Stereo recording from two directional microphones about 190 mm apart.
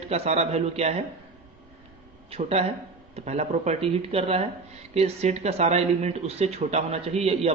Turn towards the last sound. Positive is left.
turn(degrees=-35)  # may be behind; listen again after turning